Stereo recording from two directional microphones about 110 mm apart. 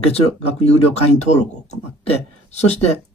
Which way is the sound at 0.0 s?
70° left (ahead or behind).